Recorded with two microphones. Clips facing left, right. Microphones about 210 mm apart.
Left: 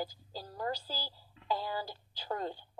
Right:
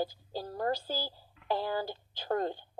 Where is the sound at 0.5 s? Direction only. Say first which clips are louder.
Right 5 dB; 50° right (ahead or behind).